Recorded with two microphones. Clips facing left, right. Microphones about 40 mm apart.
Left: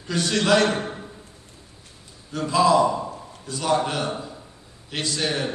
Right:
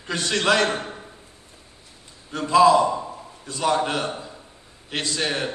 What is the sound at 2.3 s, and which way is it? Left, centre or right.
A man's voice, right.